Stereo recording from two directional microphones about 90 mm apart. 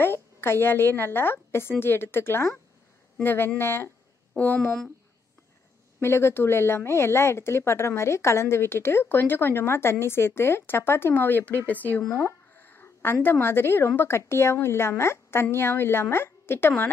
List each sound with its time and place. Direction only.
0.0 s speech: 25° left (ahead or behind)
5.9 s speech: 30° left (ahead or behind)